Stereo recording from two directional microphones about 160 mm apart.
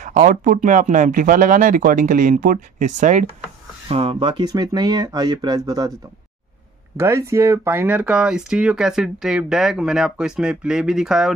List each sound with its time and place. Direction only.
0.0 s speech: 60° right (ahead or behind)
3.9 s speech: 35° right (ahead or behind)
7.0 s speech: 15° right (ahead or behind)